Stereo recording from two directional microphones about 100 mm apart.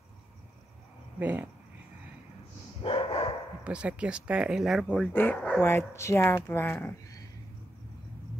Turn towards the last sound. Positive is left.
turn(degrees=20)  # may be behind; listen again after turning